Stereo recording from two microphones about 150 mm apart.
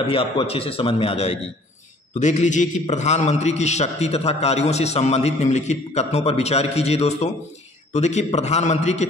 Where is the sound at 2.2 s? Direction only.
55° left (ahead or behind).